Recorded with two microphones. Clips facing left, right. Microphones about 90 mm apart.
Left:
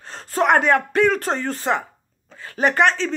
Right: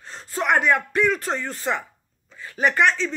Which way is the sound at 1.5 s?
25° left (ahead or behind).